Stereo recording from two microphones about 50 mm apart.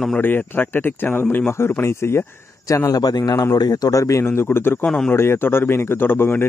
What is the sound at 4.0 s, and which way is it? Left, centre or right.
Speech, left.